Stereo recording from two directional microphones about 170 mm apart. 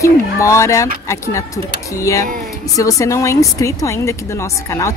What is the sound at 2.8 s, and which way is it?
Speech, 20° left (ahead or behind).